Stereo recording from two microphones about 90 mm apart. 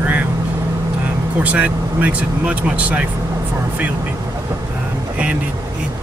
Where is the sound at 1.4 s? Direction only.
15° right (ahead or behind).